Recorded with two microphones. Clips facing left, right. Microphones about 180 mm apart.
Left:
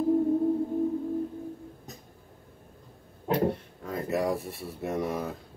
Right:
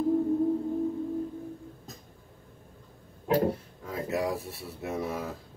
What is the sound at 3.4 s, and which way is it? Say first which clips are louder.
Speech: left 1 dB; centre (ahead or behind).